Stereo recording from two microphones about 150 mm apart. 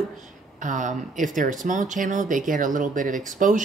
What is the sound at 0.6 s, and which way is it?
Speech, 55° right (ahead or behind).